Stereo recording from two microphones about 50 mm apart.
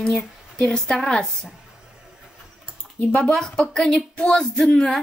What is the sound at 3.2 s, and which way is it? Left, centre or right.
A woman's voice, centre.